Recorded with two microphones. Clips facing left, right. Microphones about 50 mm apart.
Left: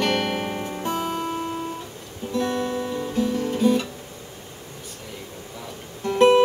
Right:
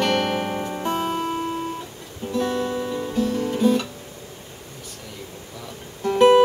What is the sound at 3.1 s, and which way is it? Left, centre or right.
Music, left.